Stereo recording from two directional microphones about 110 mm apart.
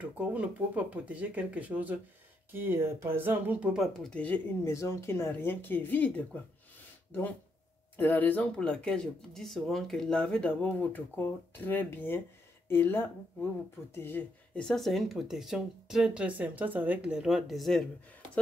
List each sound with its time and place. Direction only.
0.0 s speech: 10° right (ahead or behind)
3.8 s speech: 5° left (ahead or behind)
4.6 s speech: 25° left (ahead or behind)
14.6 s speech: 5° left (ahead or behind)